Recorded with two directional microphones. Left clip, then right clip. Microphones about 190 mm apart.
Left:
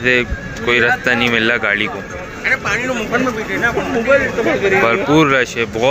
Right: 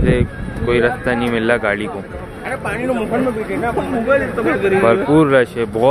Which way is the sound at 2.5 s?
55° right (ahead or behind).